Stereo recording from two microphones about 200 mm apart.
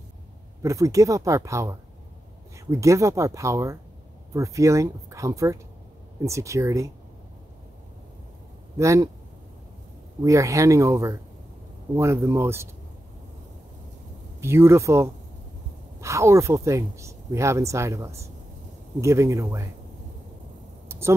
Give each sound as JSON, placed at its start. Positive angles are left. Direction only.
{"t": 0.6, "sound": "speech", "side_deg": -15}
{"t": 8.7, "sound": "speech", "side_deg": -15}
{"t": 10.2, "sound": "speech", "side_deg": -15}
{"t": 14.4, "sound": "speech", "side_deg": -15}